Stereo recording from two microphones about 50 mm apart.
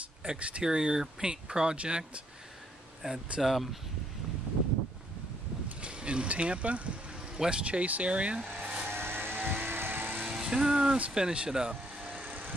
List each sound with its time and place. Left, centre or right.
0.3 s speech: right
3.3 s speech: centre
6.0 s speech: right
8.8 s vehicle: right
10.2 s speech: centre